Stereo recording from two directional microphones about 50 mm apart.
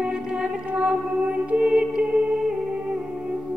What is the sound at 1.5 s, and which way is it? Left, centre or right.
Music, right.